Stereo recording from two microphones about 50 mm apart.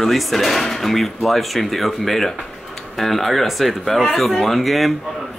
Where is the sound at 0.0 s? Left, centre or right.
Centre.